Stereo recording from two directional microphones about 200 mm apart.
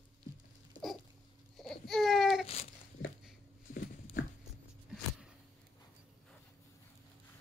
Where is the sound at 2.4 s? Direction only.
30° left (ahead or behind).